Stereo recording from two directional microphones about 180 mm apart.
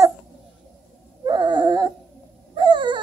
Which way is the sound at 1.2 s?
25° right (ahead or behind).